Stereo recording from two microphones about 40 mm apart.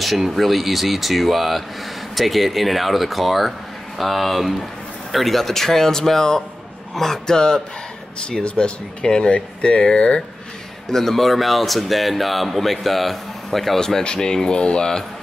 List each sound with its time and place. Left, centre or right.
0.0 s speech: centre; by 10.2 s left
10.9 s speech: centre